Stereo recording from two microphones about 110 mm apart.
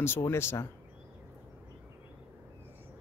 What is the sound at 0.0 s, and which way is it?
Speech, 20° left (ahead or behind).